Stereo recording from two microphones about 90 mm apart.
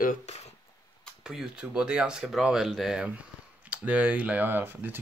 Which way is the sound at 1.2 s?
5° right (ahead or behind).